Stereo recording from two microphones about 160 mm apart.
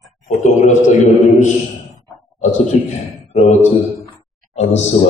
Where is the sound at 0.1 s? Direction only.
45° left (ahead or behind).